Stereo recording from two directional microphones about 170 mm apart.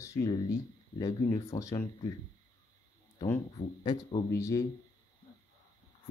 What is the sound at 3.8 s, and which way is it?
Speech, 25° left (ahead or behind).